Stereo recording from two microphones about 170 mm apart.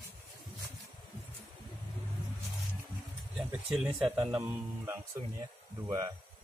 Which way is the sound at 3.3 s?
5° right (ahead or behind).